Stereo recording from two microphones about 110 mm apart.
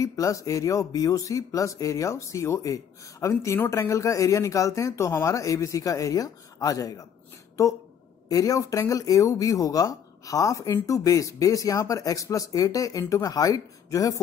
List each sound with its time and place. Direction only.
0.0 s speech: 30° left (ahead or behind)
8.3 s speech: 30° left (ahead or behind)